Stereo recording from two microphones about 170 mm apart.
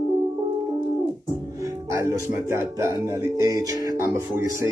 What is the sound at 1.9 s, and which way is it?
Speech, 15° right (ahead or behind).